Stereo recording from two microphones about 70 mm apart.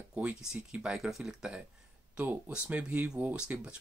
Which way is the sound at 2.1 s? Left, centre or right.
Right.